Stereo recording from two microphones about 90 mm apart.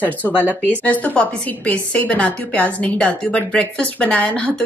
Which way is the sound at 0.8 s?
20° left (ahead or behind).